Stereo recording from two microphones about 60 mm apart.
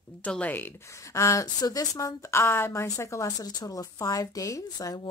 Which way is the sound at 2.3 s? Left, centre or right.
Left.